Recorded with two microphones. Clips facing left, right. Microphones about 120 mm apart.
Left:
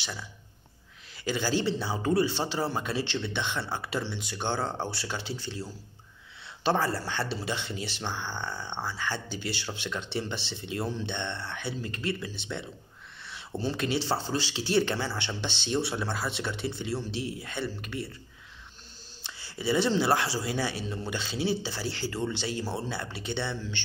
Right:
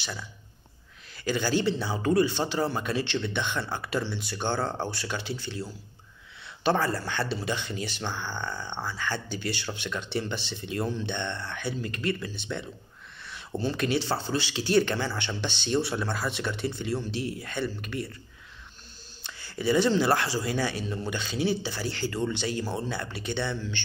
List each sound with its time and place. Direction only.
1.2 s speech: 25° left (ahead or behind)
19.2 s speech: 25° left (ahead or behind)